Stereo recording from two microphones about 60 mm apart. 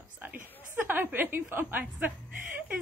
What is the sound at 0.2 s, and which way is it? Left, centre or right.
Chuckle, right.